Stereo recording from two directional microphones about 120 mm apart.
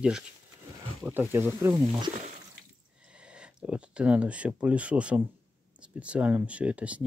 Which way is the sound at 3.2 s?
10° right (ahead or behind).